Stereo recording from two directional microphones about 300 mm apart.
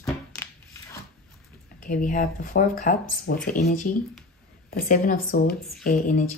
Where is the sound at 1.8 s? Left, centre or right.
Left.